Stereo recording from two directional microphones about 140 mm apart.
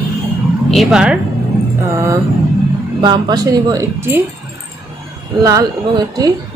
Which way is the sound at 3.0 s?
30° right (ahead or behind).